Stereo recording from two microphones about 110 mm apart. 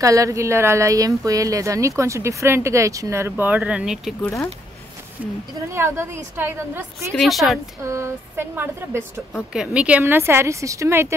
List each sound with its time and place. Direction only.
0.0 s speech: 30° right (ahead or behind); by 4.1 s 5° right (ahead or behind)
5.7 s speech: 25° right (ahead or behind)
7.2 s a woman's voice: centre (ahead or behind)
7.8 s speech: 25° right (ahead or behind)
9.5 s speech: 10° right (ahead or behind); by 11.1 s 25° right (ahead or behind)